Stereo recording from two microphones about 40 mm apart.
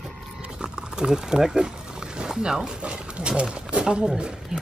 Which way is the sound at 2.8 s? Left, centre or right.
Right.